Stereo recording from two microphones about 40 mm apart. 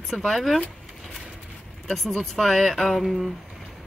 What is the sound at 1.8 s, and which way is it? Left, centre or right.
Speech, centre.